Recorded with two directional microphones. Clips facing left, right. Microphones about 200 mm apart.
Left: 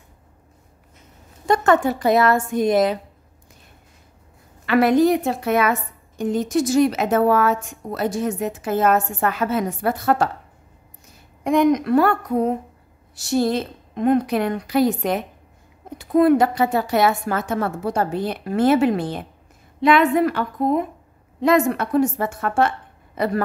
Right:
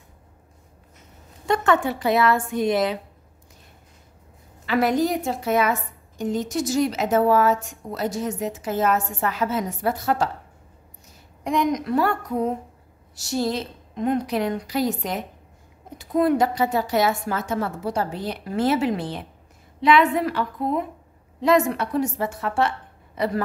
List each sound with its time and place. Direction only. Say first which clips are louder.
1.4 s speech: left 3 dB; 40° left (ahead or behind)
4.6 s a woman's voice: left 5 dB; 60° left (ahead or behind)
11.4 s a woman's voice: left 6 dB; 55° left (ahead or behind)